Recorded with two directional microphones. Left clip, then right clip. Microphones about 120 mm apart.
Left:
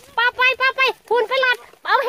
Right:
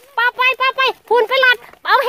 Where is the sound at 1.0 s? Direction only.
90° right.